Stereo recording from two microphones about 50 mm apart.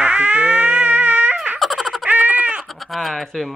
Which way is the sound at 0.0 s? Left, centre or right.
Right.